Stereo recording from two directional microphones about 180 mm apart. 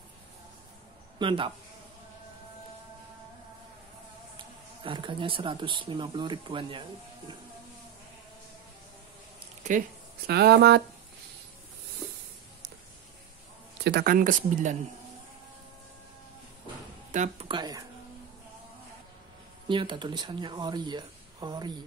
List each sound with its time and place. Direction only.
1.2 s speech: 30° right (ahead or behind)
4.8 s speech: 25° right (ahead or behind)
9.6 s speech: 45° right (ahead or behind); by 10.8 s 65° right (ahead or behind)
13.8 s speech: 60° right (ahead or behind)
17.1 s speech: 40° right (ahead or behind)
17.5 s speech: 25° right (ahead or behind)
19.7 s speech: 25° right (ahead or behind)